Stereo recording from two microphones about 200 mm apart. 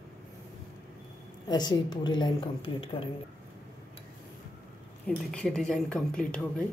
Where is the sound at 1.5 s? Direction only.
20° left (ahead or behind).